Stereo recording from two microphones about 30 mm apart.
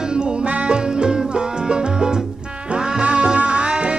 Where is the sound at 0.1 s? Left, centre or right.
Right.